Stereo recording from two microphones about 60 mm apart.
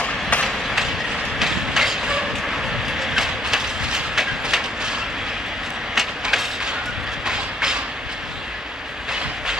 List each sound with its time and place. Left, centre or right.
0.0 s a sound: centre
0.7 s train: centre
5.9 s train: centre
7.2 s vehicle: centre